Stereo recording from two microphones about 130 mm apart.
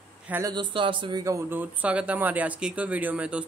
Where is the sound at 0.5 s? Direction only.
40° right (ahead or behind).